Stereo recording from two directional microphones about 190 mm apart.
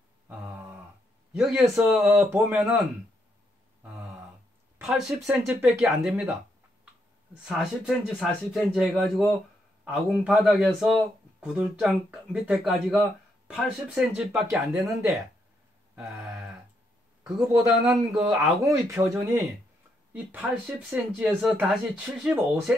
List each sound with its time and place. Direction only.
1.3 s speech: 5° right (ahead or behind)
4.7 s speech: 10° right (ahead or behind)
7.4 s speech: centre (ahead or behind)
16.0 s a sound: centre (ahead or behind)
17.9 s speech: centre (ahead or behind)
18.6 s speech: 15° right (ahead or behind)